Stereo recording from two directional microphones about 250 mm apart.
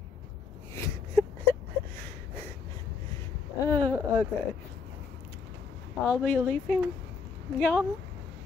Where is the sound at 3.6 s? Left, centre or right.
Centre.